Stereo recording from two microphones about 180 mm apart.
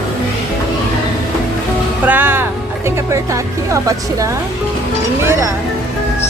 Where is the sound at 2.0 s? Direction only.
10° right (ahead or behind).